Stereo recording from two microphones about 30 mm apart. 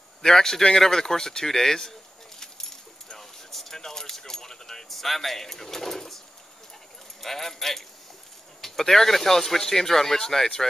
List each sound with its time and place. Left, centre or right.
0.2 s speech: centre
2.4 s keys jangling: centre
4.8 s speech: centre